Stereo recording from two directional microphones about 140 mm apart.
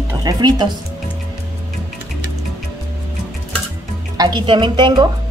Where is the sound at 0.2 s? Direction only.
30° right (ahead or behind).